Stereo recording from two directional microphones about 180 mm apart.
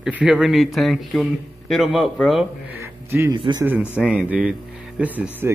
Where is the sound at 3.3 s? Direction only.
25° right (ahead or behind).